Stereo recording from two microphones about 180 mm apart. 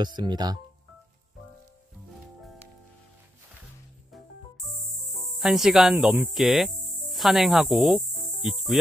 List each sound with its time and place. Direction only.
0.0 s speech: 25° right (ahead or behind)
4.6 s music: centre (ahead or behind)